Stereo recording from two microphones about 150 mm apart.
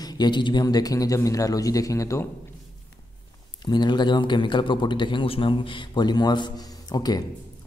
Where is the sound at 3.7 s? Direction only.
30° left (ahead or behind).